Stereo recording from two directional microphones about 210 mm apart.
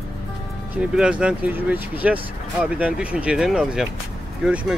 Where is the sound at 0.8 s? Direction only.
5° right (ahead or behind).